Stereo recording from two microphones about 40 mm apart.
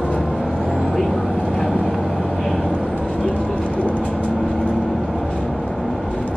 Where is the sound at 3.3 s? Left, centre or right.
Left.